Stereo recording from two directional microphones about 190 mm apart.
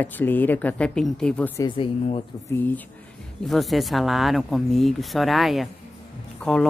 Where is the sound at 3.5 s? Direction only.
Centre (ahead or behind).